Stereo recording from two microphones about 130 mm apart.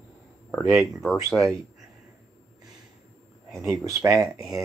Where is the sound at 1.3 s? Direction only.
Centre (ahead or behind).